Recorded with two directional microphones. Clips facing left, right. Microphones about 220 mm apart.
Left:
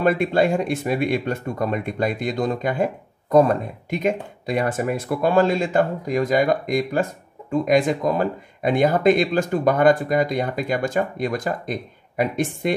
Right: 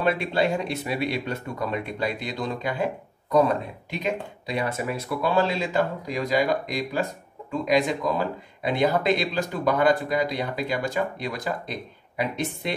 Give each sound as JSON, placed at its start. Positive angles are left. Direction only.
{"t": 0.0, "sound": "speech", "side_deg": 50}